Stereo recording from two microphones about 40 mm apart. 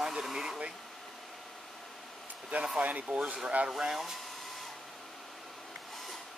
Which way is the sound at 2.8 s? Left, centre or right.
Right.